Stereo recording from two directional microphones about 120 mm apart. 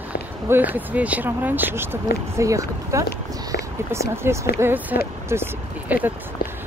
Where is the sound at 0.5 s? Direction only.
15° right (ahead or behind).